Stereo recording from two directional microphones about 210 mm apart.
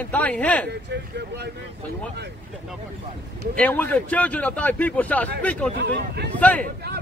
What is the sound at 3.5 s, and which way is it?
Speech, 10° left (ahead or behind).